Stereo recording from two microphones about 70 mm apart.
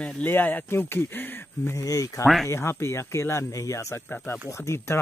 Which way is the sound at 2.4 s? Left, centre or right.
Left.